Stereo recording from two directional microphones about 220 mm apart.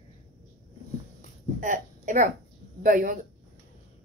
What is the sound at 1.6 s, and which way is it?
A woman's voice, 35° right (ahead or behind).